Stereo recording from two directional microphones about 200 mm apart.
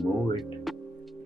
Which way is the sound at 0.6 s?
Centre (ahead or behind).